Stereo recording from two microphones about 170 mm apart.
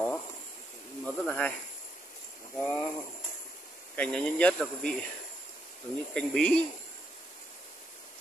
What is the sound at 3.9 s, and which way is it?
Speech, 5° left (ahead or behind).